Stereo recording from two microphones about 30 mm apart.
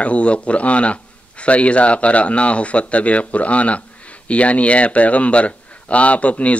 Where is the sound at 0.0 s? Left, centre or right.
Left.